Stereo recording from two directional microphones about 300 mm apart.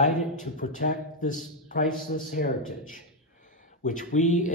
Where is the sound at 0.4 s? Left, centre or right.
Left.